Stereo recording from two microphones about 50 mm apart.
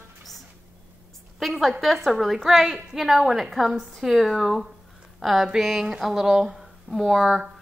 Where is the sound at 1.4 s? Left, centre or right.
Centre.